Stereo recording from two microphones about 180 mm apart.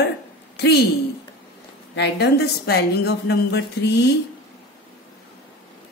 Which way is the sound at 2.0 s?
70° left (ahead or behind).